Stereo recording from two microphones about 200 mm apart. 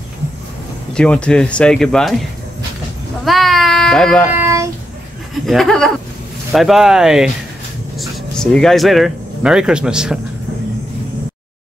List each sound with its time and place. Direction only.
0.9 s speech: 5° left (ahead or behind)
3.3 s speech: centre (ahead or behind)
4.4 s a sound: 15° right (ahead or behind)
5.3 s speech: centre (ahead or behind)